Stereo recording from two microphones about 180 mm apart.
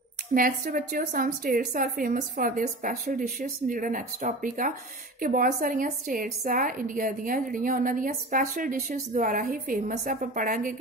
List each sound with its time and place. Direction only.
0.3 s a woman's voice: 50° right (ahead or behind)